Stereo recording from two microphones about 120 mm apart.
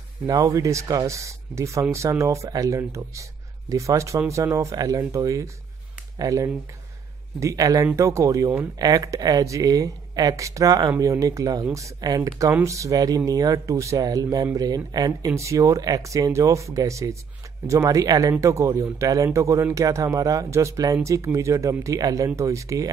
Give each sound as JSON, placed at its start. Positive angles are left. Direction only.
{"t": 0.3, "sound": "speech", "side_deg": -30}